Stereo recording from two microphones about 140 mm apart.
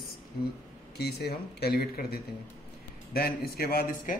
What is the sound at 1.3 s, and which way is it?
Speech, 90° left.